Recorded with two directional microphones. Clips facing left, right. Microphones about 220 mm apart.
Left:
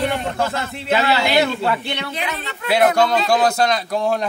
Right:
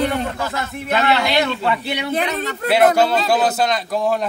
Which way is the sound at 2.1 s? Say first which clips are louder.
Right 6 dB; 45° right (ahead or behind).